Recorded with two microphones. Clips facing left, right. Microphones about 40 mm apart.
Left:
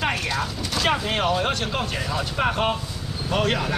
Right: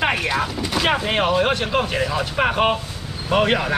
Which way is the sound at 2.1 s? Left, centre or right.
Right.